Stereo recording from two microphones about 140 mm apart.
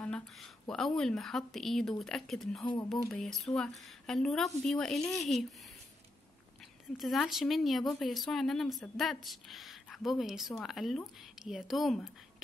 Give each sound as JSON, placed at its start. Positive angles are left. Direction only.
{"t": 0.0, "sound": "a woman's voice", "side_deg": 5}
{"t": 2.6, "sound": "speech", "side_deg": 35}
{"t": 2.9, "sound": "a woman's voice", "side_deg": 5}
{"t": 7.0, "sound": "a woman's voice", "side_deg": 0}